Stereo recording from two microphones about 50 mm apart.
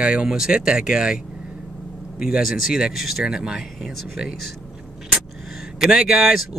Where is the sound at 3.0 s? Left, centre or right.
Centre.